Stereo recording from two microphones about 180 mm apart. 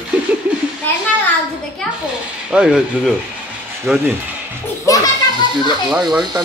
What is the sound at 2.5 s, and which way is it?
Speech, 5° right (ahead or behind).